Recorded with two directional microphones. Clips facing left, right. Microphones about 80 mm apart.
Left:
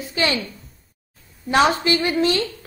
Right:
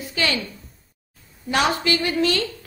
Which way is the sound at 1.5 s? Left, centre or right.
Left.